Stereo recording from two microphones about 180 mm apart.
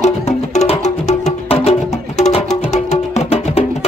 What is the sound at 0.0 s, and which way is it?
Music, 40° left (ahead or behind).